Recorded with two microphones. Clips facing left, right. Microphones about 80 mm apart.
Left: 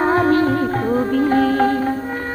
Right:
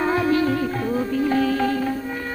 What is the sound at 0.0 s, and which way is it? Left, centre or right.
Music, left.